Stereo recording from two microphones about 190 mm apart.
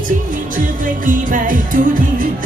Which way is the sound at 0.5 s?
45° right (ahead or behind).